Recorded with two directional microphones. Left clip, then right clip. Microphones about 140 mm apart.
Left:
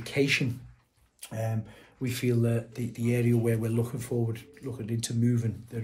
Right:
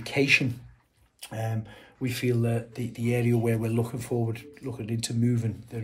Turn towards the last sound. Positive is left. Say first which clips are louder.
# right 1 dB
turn(degrees=-15)  # may be behind; listen again after turning